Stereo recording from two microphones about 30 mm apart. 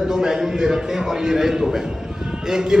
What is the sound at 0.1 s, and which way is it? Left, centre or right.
A man's voice, right.